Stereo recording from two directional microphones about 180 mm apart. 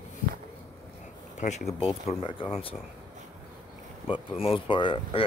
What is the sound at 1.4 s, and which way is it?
Speech, 40° left (ahead or behind).